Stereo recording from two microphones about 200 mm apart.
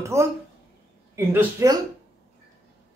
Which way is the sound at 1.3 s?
10° right (ahead or behind).